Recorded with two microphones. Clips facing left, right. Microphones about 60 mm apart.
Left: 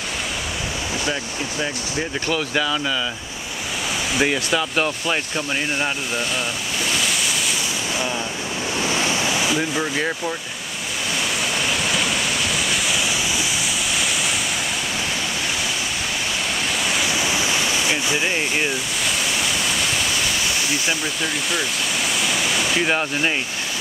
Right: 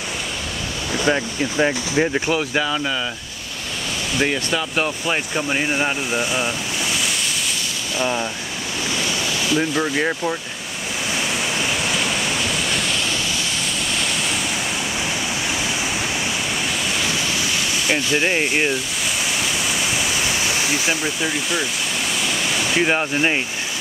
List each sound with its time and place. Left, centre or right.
1.0 s speech: right
2.1 s speech: centre
4.2 s speech: centre
8.0 s speech: centre
9.1 s waves: centre
9.6 s speech: centre
11.5 s waves: centre
16.8 s waves: centre
18.2 s speech: centre
19.6 s waterfall: centre
20.4 s speech: centre
22.2 s waterfall: centre
22.8 s speech: centre